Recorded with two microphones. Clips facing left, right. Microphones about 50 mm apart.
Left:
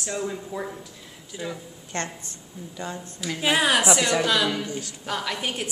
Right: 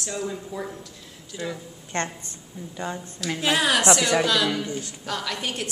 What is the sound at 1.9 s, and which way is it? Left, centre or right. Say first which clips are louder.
Speech: right 3 dB; right.